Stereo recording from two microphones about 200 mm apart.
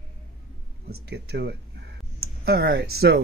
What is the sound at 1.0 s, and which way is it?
Speech, 55° right (ahead or behind).